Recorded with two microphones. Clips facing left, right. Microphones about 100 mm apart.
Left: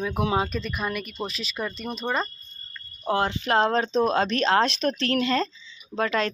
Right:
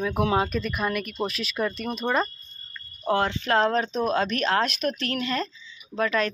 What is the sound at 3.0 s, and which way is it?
Speech, 15° left (ahead or behind).